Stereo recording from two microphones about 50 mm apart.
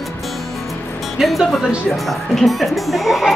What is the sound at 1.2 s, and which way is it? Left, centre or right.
Speech, centre.